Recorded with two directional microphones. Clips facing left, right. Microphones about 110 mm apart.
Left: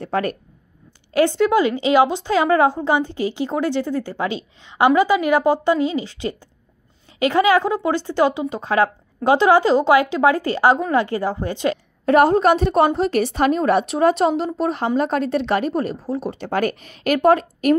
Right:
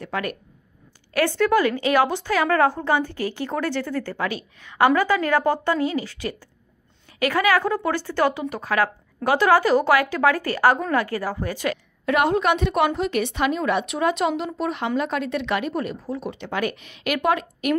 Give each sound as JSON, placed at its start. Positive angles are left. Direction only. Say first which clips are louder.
{"t": 0.0, "sound": "speech", "louder": "left 6 dB", "side_deg": 35}
{"t": 1.1, "sound": "a woman's voice", "louder": "left 3 dB", "side_deg": 20}
{"t": 12.1, "sound": "a woman's voice", "louder": "left 6 dB", "side_deg": 35}